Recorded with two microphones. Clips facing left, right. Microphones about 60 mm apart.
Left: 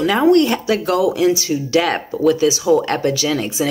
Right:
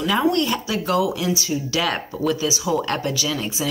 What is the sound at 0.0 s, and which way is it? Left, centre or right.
Speech, left.